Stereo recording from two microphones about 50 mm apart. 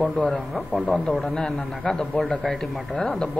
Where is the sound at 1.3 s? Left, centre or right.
Centre.